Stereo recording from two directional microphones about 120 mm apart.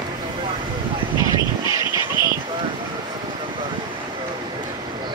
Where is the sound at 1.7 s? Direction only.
40° left (ahead or behind).